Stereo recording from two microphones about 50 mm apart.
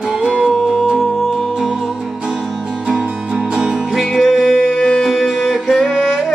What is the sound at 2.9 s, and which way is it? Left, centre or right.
Music, centre.